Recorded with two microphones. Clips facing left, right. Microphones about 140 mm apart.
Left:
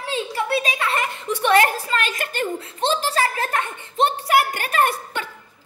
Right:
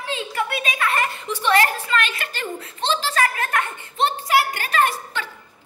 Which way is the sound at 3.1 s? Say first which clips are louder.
Even; 30° left (ahead or behind).